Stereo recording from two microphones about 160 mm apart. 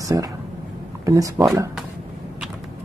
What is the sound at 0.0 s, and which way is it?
Speech, 20° right (ahead or behind).